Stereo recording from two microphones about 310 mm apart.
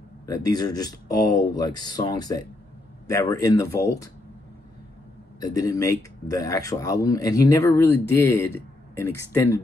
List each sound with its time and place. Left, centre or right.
0.3 s speech: centre
5.4 s speech: centre